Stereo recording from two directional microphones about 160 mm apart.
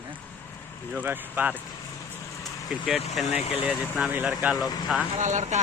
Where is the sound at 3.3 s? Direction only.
40° left (ahead or behind).